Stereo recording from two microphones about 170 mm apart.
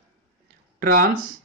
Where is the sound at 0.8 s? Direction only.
55° right (ahead or behind).